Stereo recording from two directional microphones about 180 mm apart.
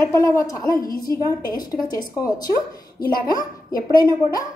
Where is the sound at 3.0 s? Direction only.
55° left (ahead or behind).